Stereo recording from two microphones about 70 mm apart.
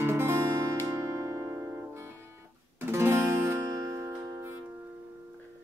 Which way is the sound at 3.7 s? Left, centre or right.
Right.